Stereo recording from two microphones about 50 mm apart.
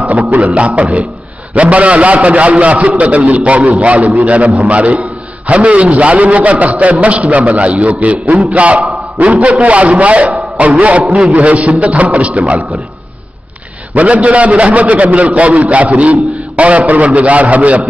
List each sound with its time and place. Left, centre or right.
0.6 s a man's voice: right
13.9 s a man's voice: right